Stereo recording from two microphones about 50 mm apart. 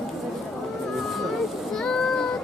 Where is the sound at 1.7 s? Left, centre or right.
Centre.